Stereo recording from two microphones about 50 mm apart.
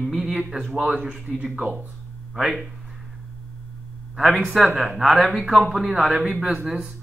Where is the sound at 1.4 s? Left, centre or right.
Right.